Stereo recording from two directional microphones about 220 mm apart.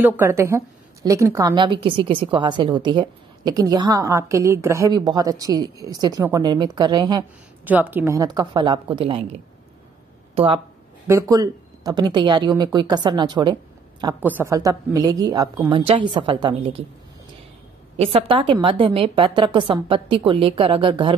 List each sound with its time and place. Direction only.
0.0 s a woman's voice: 10° right (ahead or behind)
7.6 s a woman's voice: 10° right (ahead or behind); by 10.6 s 25° right (ahead or behind)
11.1 s a woman's voice: 15° right (ahead or behind)
17.9 s a woman's voice: 25° right (ahead or behind)